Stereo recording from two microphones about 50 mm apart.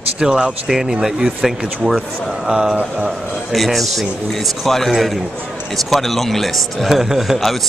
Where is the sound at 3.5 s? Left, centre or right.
Centre.